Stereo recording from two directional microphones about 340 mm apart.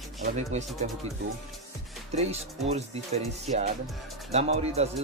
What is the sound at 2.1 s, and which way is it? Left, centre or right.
Speech, centre.